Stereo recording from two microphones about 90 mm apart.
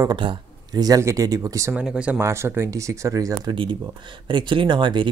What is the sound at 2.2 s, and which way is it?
Speech, 30° right (ahead or behind).